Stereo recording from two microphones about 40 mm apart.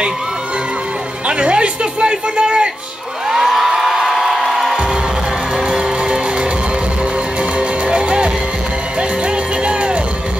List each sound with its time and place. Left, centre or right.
1.2 s a sound: right
3.3 s music: centre
5.6 s music: centre
7.5 s music: right